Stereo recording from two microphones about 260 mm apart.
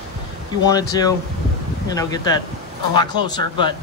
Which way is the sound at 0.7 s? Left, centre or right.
Centre.